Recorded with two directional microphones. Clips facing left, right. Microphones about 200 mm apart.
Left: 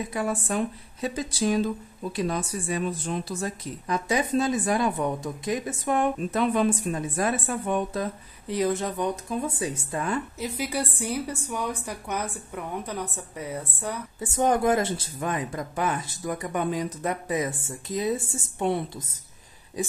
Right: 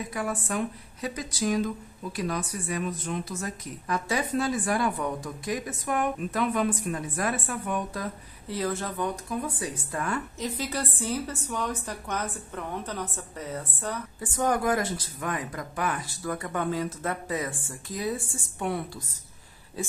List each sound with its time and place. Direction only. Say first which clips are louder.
0.1 s a woman's voice: left 2 dB; 25° left (ahead or behind); by 13.9 s 10° left (ahead or behind)
14.2 s a woman's voice: left 4 dB; 25° left (ahead or behind)